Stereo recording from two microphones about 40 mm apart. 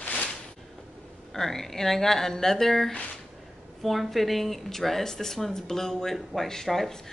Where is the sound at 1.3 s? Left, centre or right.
Centre.